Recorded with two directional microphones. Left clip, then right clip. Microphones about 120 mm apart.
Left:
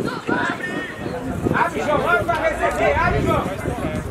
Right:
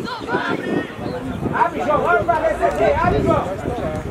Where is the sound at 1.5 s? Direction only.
30° left (ahead or behind).